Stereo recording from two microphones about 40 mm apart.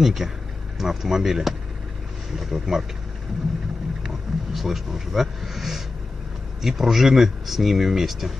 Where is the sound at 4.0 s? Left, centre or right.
Centre.